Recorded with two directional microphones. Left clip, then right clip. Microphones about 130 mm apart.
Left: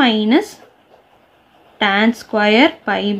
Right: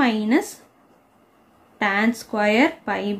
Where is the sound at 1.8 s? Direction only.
25° left (ahead or behind).